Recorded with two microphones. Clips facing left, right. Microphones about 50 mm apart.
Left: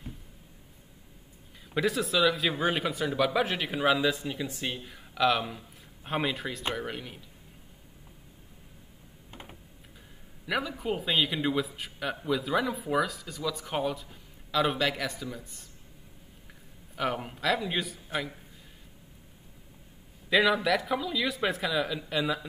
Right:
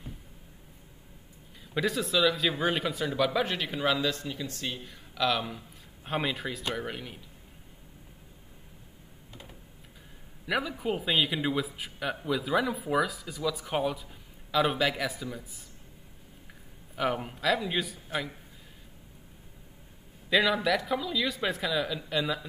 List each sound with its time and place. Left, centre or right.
1.7 s a man's voice: centre
9.3 s typing: left
10.4 s a man's voice: centre
16.9 s a man's voice: centre
20.2 s a man's voice: centre